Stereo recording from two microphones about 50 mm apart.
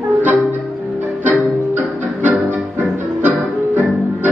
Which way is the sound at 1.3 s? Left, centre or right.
Right.